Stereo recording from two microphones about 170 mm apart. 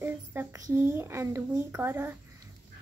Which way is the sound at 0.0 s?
15° right (ahead or behind).